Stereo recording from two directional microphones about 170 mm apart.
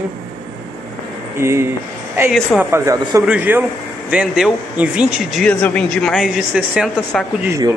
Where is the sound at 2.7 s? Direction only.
20° right (ahead or behind); by 7.3 s centre (ahead or behind).